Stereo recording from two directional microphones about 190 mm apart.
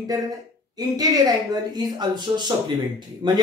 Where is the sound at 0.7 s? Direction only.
20° right (ahead or behind).